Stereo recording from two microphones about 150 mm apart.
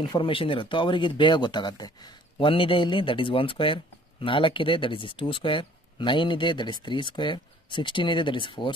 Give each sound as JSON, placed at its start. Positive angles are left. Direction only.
{"t": 0.0, "sound": "speech", "side_deg": 30}